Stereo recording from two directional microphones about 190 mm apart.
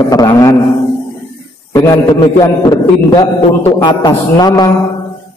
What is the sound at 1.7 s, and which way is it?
A man's voice, 15° left (ahead or behind).